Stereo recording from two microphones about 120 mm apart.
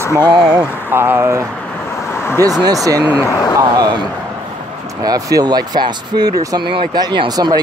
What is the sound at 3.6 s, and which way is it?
Speech, 30° right (ahead or behind).